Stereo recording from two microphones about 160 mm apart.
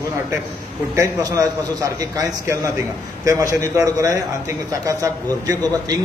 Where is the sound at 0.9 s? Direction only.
20° right (ahead or behind).